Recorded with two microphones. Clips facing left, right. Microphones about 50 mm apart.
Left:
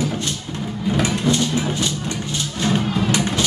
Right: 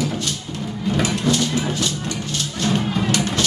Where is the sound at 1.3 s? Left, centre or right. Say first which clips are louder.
Even; left.